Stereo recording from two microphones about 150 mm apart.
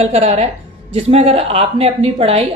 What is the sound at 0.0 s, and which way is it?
A woman's voice, 45° right (ahead or behind).